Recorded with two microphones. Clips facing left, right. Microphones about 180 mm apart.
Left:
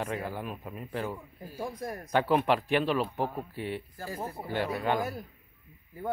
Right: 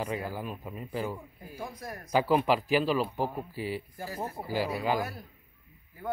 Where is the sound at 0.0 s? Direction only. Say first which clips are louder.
Even; 5° right (ahead or behind).